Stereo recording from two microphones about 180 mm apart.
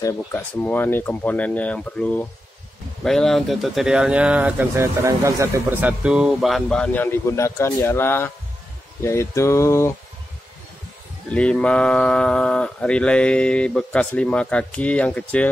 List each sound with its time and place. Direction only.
0.0 s speech: 10° left (ahead or behind)
11.2 s speech: 5° left (ahead or behind)